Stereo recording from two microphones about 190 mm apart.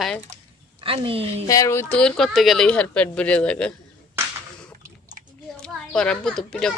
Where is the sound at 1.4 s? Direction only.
15° left (ahead or behind).